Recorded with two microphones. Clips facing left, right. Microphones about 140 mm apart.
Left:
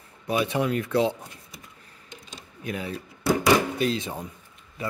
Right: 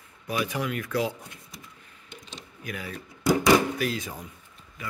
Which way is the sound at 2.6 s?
25° left (ahead or behind).